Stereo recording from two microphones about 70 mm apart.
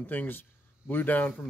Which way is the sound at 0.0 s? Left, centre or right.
Left.